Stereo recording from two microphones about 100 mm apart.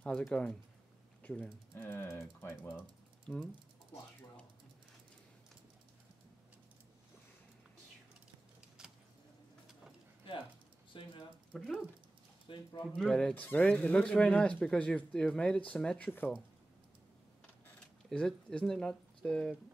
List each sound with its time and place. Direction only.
0.0 s speech: 10° left (ahead or behind)
1.9 s speech: 25° left (ahead or behind)
3.3 s speech: 10° left (ahead or behind)
8.8 s a sound: 5° right (ahead or behind)
10.9 s speech: 60° left (ahead or behind)
11.5 s speech: centre (ahead or behind)
12.5 s speech: 60° left (ahead or behind)
12.8 s speech: 5° left (ahead or behind)
18.1 s speech: 10° left (ahead or behind)